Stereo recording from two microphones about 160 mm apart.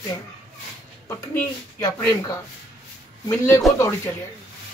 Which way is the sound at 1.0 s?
10° left (ahead or behind).